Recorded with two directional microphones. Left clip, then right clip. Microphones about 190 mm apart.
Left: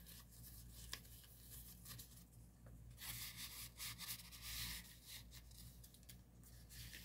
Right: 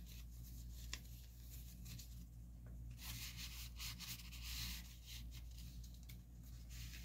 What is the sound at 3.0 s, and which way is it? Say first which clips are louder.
Rub: even; 15° left (ahead or behind).